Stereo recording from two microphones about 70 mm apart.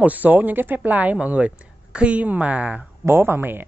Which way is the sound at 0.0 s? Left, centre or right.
Right.